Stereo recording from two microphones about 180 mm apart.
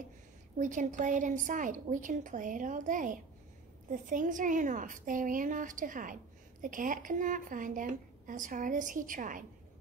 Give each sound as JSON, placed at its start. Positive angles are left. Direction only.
{"t": 0.6, "sound": "a woman's voice", "side_deg": -45}